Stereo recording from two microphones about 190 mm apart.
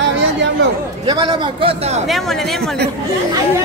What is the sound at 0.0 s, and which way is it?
Chatter, 70° right (ahead or behind).